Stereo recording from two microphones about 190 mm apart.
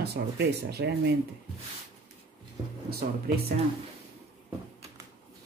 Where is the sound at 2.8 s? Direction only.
55° right (ahead or behind).